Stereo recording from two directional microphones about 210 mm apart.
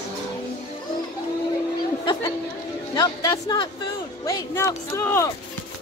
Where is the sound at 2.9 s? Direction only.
20° left (ahead or behind).